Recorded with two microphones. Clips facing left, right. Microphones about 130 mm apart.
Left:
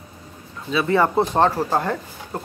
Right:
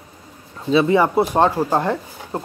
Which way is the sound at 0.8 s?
15° right (ahead or behind).